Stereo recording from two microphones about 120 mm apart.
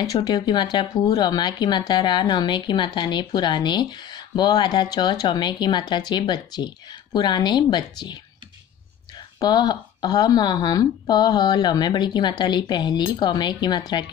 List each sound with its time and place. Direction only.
0.0 s speech: 35° left (ahead or behind)
9.4 s speech: 35° left (ahead or behind)